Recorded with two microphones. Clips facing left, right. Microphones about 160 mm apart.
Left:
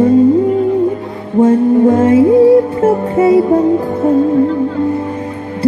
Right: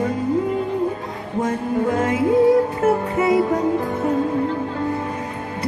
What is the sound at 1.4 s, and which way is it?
Music, 30° left (ahead or behind).